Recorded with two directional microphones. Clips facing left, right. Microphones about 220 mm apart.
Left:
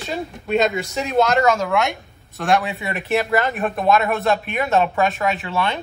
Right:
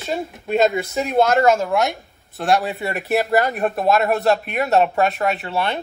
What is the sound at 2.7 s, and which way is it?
Speech, 45° right (ahead or behind).